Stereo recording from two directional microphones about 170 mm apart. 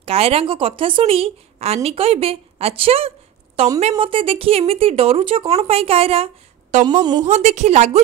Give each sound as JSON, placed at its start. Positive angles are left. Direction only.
{"t": 0.0, "sound": "speech", "side_deg": -35}
{"t": 7.0, "sound": "a woman's voice", "side_deg": -25}
{"t": 7.2, "sound": "speech", "side_deg": -40}